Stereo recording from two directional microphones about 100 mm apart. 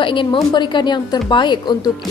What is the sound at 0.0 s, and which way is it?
Speech, 55° left (ahead or behind).